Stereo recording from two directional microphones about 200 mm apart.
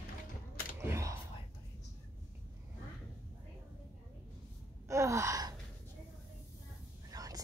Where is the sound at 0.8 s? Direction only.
15° right (ahead or behind).